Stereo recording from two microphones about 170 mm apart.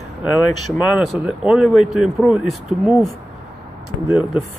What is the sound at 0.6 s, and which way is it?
Speech, centre (ahead or behind).